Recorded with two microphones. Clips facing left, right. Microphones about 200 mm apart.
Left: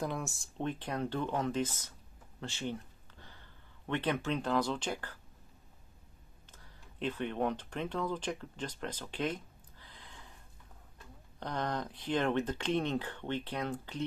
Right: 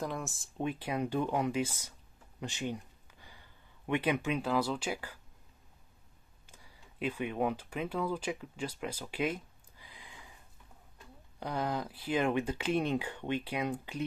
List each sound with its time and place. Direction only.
0.0 s speech: centre (ahead or behind)
6.5 s speech: 10° right (ahead or behind)
11.3 s speech: 10° right (ahead or behind)